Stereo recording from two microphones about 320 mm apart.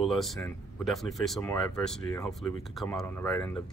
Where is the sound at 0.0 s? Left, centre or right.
Centre.